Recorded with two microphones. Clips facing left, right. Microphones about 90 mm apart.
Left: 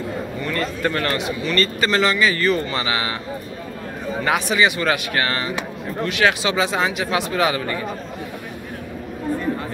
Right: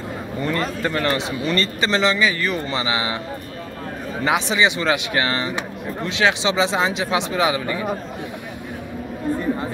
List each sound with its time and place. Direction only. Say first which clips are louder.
0.4 s a sound: right 3 dB; 30° right (ahead or behind)
0.8 s a man's voice: left 1 dB; 20° right (ahead or behind)
4.2 s a man's voice: even; 20° right (ahead or behind)